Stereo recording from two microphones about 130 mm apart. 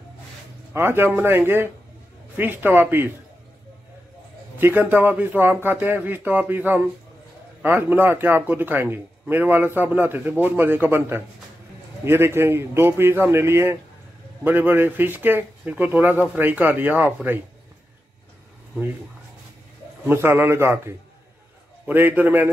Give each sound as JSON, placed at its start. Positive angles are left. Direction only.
{"t": 0.7, "sound": "a man's voice", "side_deg": -15}
{"t": 4.6, "sound": "a man's voice", "side_deg": -15}
{"t": 20.1, "sound": "a man's voice", "side_deg": -15}